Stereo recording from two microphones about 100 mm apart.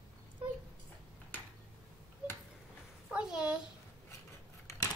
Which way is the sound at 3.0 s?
10° right (ahead or behind).